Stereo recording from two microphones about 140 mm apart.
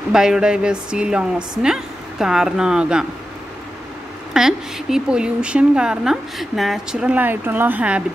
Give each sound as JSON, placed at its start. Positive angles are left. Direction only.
{"t": 0.1, "sound": "a woman's voice", "side_deg": -5}
{"t": 4.3, "sound": "speech", "side_deg": -5}